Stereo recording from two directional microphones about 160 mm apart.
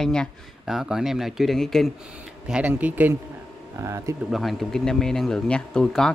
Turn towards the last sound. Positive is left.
turn(degrees=5)  # may be behind; listen again after turning